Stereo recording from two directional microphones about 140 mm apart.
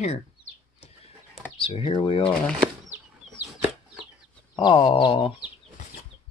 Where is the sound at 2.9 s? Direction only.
15° right (ahead or behind).